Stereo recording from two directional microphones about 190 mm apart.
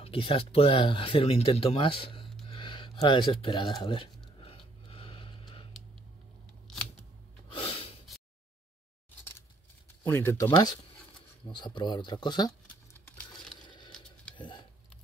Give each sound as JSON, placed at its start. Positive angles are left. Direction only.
{"t": 0.0, "sound": "speech", "side_deg": 30}
{"t": 4.4, "sound": "a sound", "side_deg": 30}
{"t": 7.4, "sound": "gasp", "side_deg": 25}
{"t": 10.0, "sound": "speech", "side_deg": 10}
{"t": 11.4, "sound": "speech", "side_deg": 25}
{"t": 12.9, "sound": "crumpling", "side_deg": 5}
{"t": 13.7, "sound": "patter", "side_deg": 25}
{"t": 14.3, "sound": "a sound", "side_deg": 25}